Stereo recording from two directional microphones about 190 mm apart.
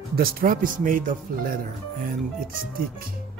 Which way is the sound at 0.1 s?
50° right (ahead or behind).